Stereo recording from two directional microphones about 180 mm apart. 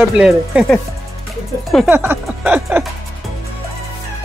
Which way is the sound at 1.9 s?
10° right (ahead or behind).